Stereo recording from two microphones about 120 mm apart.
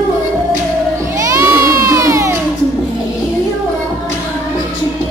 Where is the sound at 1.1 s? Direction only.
25° right (ahead or behind).